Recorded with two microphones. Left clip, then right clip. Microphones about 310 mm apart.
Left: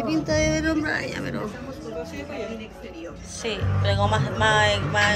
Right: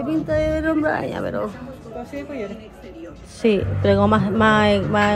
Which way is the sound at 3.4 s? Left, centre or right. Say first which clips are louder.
Right 9 dB; centre.